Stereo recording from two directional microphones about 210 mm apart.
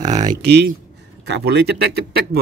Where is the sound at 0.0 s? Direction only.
35° right (ahead or behind).